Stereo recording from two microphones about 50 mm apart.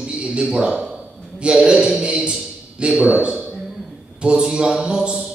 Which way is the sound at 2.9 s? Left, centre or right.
Right.